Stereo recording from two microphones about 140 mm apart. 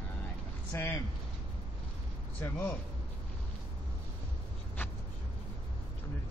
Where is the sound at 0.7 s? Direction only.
20° left (ahead or behind).